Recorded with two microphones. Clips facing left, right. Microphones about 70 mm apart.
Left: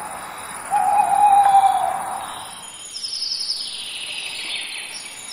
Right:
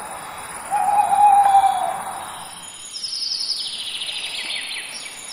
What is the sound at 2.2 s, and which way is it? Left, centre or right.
Cricket, centre.